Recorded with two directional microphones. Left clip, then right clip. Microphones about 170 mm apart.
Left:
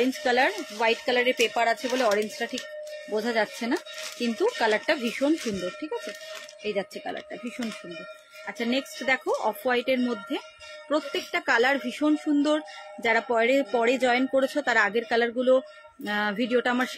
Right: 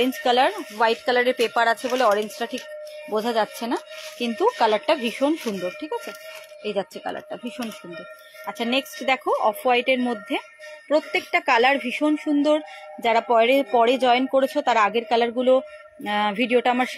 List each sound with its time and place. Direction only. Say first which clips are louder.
0.0 s a woman's voice: right 4 dB; 15° right (ahead or behind)